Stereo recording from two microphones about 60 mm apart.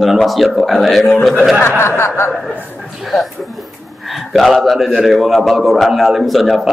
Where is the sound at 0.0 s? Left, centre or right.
Centre.